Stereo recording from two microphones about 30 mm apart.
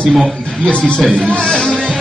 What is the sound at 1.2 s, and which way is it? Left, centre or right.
Speech, left.